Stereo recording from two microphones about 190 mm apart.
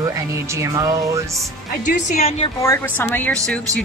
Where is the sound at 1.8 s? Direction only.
40° left (ahead or behind).